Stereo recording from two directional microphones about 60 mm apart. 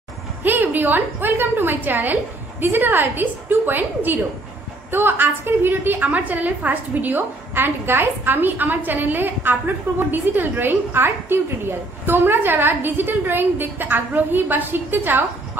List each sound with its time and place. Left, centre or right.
0.4 s a woman's voice: right